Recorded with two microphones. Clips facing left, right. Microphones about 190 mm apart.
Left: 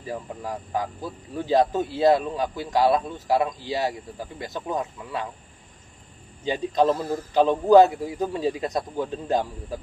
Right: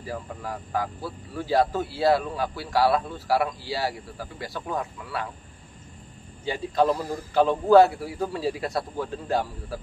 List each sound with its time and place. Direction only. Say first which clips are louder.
0.0 s speech: left 2 dB; 20° left (ahead or behind)
6.4 s speech: left 2 dB; 20° left (ahead or behind)